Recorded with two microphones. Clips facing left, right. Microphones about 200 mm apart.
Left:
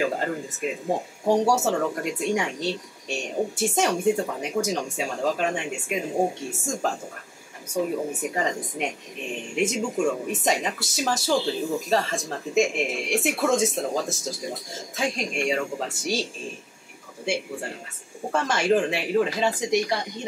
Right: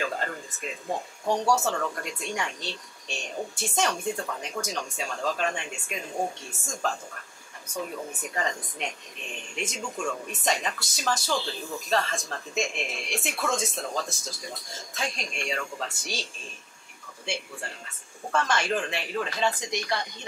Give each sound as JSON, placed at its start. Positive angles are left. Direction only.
{"t": 0.0, "sound": "speech", "side_deg": 15}
{"t": 1.2, "sound": "speech", "side_deg": 30}
{"t": 1.6, "sound": "speech", "side_deg": 20}
{"t": 8.2, "sound": "speech", "side_deg": 10}
{"t": 9.8, "sound": "speech", "side_deg": 15}